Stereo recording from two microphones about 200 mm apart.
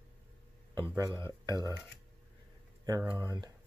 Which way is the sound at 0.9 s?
15° right (ahead or behind).